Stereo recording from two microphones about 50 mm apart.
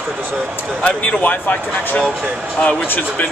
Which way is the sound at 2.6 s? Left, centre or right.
Left.